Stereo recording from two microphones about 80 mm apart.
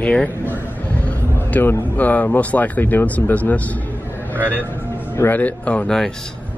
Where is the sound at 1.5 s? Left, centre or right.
Left.